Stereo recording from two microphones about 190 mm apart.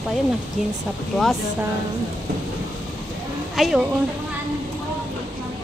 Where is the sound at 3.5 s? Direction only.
Centre (ahead or behind).